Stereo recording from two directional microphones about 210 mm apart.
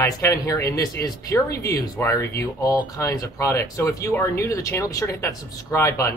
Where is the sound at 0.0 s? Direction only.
15° left (ahead or behind).